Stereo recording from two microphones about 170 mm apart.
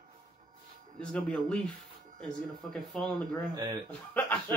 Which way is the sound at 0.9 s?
5° left (ahead or behind).